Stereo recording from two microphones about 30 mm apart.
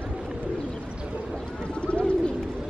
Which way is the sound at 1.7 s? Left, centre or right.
Left.